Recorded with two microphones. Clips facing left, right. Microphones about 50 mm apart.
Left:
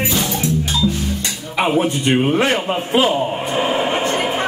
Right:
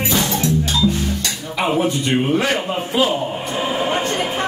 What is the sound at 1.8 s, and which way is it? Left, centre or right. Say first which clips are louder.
A man's voice: left 2 dB; left.